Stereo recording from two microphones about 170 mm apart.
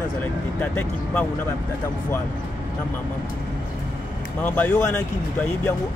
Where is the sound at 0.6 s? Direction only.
10° left (ahead or behind).